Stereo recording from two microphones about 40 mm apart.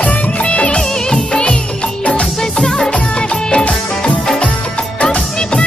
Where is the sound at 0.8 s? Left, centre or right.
Centre.